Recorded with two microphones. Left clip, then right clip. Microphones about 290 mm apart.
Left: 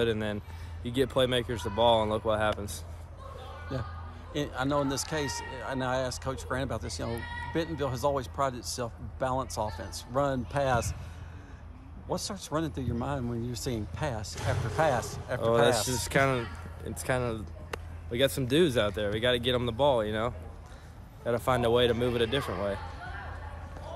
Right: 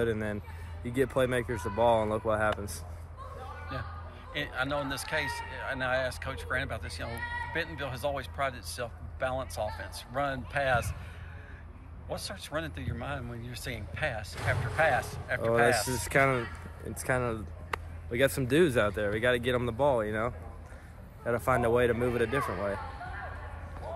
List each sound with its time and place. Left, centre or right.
0.0 s speech: centre
4.3 s speech: centre
12.1 s speech: centre
21.5 s speech: centre